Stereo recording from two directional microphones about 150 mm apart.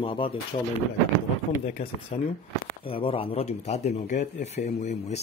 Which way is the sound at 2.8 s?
35° left (ahead or behind).